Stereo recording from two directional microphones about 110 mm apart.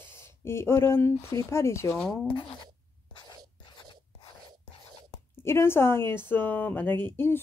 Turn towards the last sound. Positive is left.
turn(degrees=20)  # may be behind; listen again after turning